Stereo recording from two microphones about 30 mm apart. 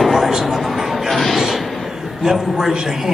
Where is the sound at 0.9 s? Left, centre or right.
Centre.